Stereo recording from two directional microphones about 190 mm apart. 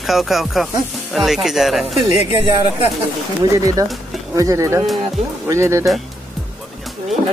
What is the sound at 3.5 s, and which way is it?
Speech, 15° right (ahead or behind).